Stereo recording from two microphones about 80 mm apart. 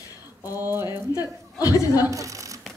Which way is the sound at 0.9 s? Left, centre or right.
Left.